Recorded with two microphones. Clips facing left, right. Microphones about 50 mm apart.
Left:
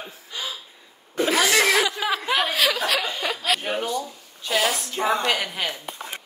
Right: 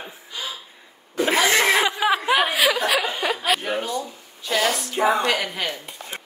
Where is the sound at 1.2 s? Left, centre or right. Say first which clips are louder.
Right 1 dB; right; by 3.6 s centre.